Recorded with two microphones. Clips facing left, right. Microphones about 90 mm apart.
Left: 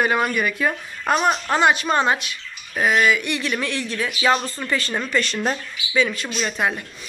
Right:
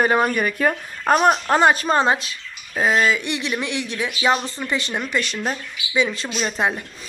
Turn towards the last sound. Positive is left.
turn(degrees=-25)  # may be behind; listen again after turning